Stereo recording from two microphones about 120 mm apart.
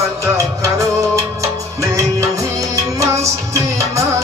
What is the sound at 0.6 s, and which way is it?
Music, 25° right (ahead or behind).